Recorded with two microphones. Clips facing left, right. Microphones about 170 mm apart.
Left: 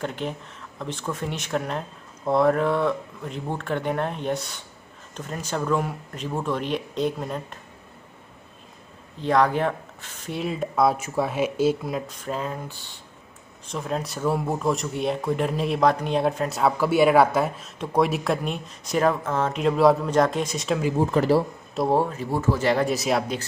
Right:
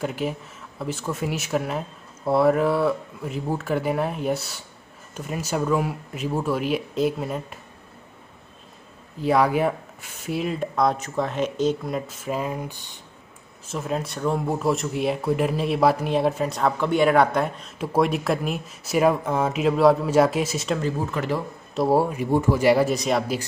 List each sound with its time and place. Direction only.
0.0 s speech: 5° right (ahead or behind)
9.2 s speech: 10° right (ahead or behind)
13.7 s speech: centre (ahead or behind)
21.0 s speech: 35° left (ahead or behind)
21.7 s speech: 5° right (ahead or behind)